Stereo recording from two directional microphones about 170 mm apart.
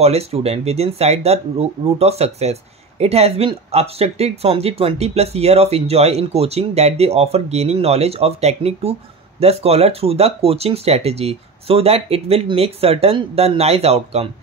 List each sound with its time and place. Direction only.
0.0 s speech: 35° right (ahead or behind)